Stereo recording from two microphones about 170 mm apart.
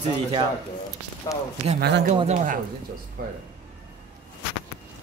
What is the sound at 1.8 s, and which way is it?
Speech, 90° right.